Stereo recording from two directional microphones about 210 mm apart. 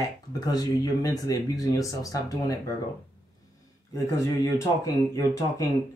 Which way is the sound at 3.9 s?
15° left (ahead or behind).